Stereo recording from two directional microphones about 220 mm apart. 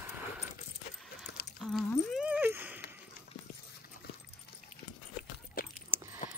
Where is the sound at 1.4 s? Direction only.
45° left (ahead or behind).